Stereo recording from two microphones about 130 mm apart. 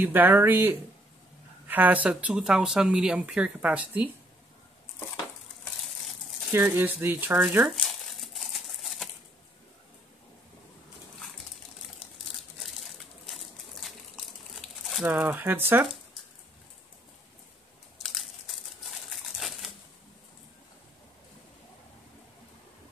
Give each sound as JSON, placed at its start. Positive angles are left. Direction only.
{"t": 0.0, "sound": "speech", "side_deg": -15}
{"t": 6.5, "sound": "speech", "side_deg": -15}
{"t": 7.8, "sound": "crumpling", "side_deg": 0}
{"t": 12.6, "sound": "a sound", "side_deg": 0}
{"t": 15.0, "sound": "speech", "side_deg": -15}
{"t": 18.0, "sound": "crumpling", "side_deg": 0}